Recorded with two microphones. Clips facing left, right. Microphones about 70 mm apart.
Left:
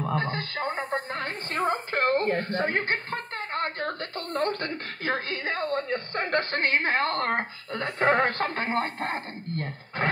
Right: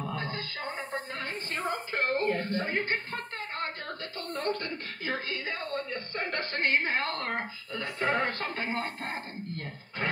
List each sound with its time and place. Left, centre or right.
0.0 s music: left
1.9 s a woman's voice: left